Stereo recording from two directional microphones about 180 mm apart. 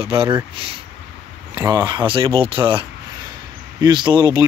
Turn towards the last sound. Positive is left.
turn(degrees=-25)  # may be behind; listen again after turning